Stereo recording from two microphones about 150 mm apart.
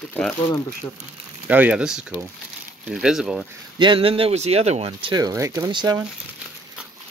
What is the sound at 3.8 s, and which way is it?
Speech, 35° right (ahead or behind).